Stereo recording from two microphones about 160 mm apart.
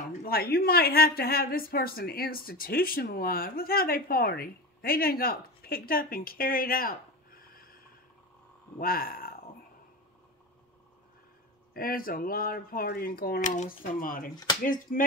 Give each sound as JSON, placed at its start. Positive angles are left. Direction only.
{"t": 0.2, "sound": "speech", "side_deg": 70}
{"t": 8.7, "sound": "a sound", "side_deg": 65}
{"t": 11.7, "sound": "speech", "side_deg": 65}
{"t": 14.3, "sound": "speech", "side_deg": 25}
{"t": 14.6, "sound": "speech", "side_deg": 60}